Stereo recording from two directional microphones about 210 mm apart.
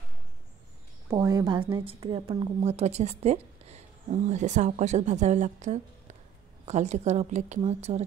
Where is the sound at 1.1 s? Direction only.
20° right (ahead or behind).